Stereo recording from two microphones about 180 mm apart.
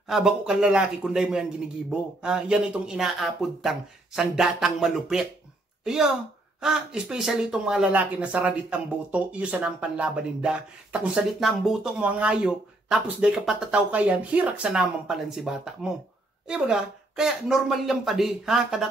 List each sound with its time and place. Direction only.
0.1 s speech: centre (ahead or behind)